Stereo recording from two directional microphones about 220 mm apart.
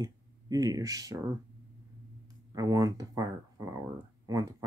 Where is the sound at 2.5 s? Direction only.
15° right (ahead or behind).